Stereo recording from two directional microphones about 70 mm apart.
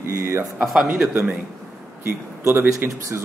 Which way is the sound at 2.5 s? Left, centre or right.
Right.